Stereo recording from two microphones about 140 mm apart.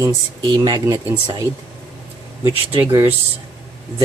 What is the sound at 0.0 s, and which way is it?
Speech, 25° right (ahead or behind).